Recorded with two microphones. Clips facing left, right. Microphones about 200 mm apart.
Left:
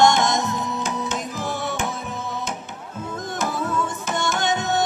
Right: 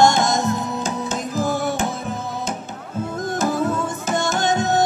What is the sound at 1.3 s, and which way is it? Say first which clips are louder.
Music: right 7 dB; 45° right (ahead or behind).